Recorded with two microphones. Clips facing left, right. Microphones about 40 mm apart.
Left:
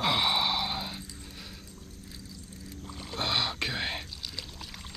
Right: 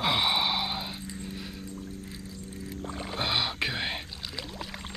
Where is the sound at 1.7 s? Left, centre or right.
Right.